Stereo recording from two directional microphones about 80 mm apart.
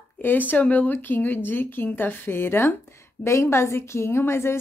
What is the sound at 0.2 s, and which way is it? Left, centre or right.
A woman's voice, left.